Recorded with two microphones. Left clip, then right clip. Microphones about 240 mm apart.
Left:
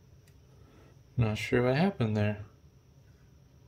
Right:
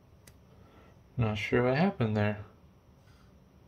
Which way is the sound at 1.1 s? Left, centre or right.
Left.